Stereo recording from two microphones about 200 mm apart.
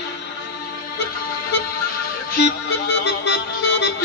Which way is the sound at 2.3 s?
55° left (ahead or behind).